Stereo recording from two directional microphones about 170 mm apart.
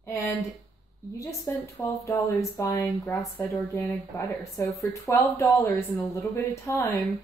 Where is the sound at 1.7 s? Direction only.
20° left (ahead or behind).